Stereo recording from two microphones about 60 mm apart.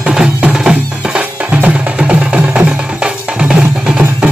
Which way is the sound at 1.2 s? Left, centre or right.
Right.